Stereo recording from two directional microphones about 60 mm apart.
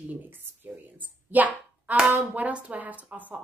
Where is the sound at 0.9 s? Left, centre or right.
Right.